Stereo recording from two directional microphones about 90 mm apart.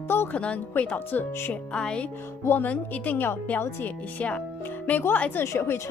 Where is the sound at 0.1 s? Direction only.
20° left (ahead or behind).